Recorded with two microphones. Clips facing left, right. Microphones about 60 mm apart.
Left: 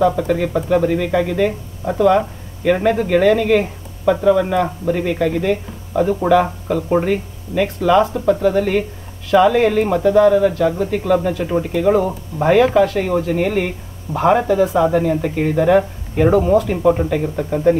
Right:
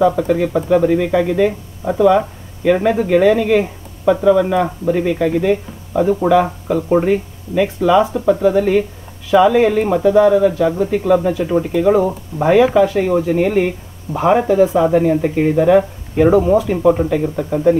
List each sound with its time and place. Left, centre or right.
0.0 s speech: centre